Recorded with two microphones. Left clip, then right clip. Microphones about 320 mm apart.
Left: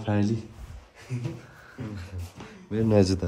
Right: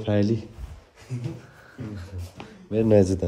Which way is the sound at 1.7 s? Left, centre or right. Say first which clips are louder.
Right 1 dB; centre.